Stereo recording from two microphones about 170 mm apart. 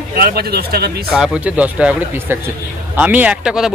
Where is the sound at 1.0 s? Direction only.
Centre (ahead or behind).